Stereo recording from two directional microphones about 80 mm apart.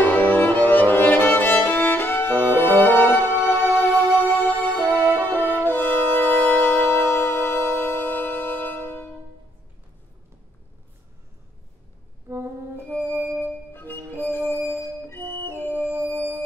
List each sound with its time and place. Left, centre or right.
0.0 s music: left
4.7 s music: right
5.5 s music: left
12.3 s music: right
13.2 s music: left